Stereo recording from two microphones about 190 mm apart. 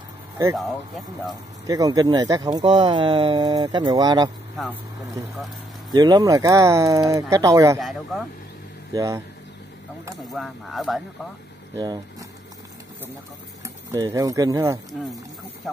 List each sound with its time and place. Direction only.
0.6 s speech: centre (ahead or behind)
1.7 s speech: 20° right (ahead or behind)
5.9 s speech: 20° right (ahead or behind)
7.8 s speech: centre (ahead or behind)
8.9 s speech: 15° right (ahead or behind)
10.3 s speech: centre (ahead or behind)
11.8 s speech: 20° right (ahead or behind)
13.9 s speech: 15° right (ahead or behind)
15.7 s speech: centre (ahead or behind)